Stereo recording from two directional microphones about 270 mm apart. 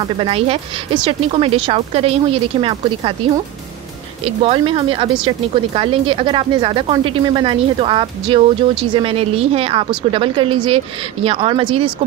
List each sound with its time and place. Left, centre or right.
0.0 s speech: right